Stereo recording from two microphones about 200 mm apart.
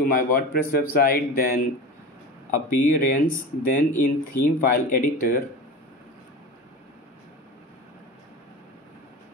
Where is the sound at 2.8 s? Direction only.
40° left (ahead or behind).